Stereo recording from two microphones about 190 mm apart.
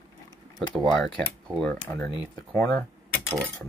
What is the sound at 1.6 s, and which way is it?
Speech, 10° left (ahead or behind).